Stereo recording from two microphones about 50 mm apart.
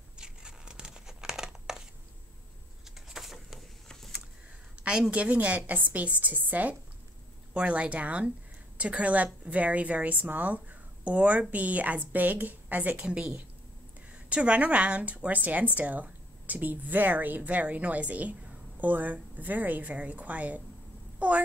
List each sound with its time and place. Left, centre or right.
0.2 s crumpling: centre
3.1 s a sound: centre
3.9 s vehicle: centre
4.8 s a woman's voice: right
12.9 s a woman's voice: right